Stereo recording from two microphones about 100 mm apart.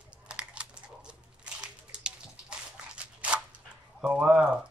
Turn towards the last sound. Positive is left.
turn(degrees=-10)  # may be behind; listen again after turning